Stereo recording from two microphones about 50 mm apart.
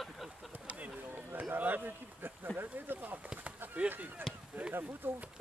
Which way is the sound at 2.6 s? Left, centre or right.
Right.